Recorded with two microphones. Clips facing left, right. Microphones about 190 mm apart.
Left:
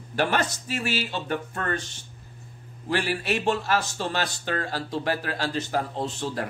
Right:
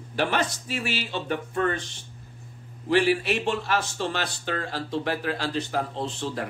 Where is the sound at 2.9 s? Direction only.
45° left (ahead or behind).